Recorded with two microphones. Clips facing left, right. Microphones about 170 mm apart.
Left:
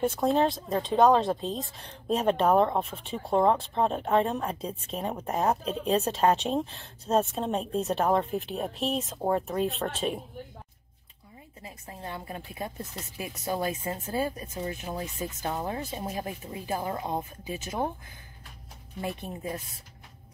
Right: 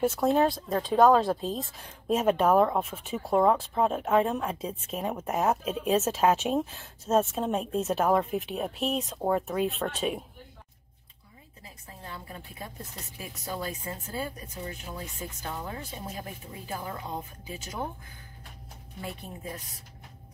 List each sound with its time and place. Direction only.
0.2 s speech: centre (ahead or behind)
11.6 s a woman's voice: 20° left (ahead or behind)
18.9 s speech: 20° left (ahead or behind)